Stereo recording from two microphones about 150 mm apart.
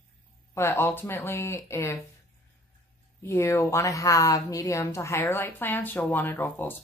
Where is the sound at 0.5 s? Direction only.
15° left (ahead or behind).